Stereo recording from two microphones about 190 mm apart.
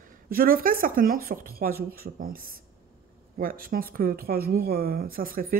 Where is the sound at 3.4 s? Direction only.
50° right (ahead or behind).